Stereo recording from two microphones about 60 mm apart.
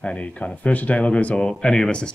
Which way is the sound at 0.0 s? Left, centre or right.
Centre.